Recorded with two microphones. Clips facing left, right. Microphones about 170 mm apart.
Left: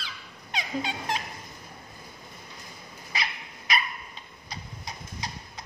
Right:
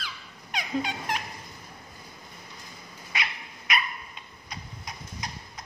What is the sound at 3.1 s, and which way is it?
Dog, 35° left (ahead or behind).